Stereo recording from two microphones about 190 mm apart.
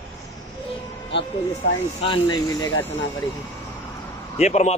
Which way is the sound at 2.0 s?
25° left (ahead or behind).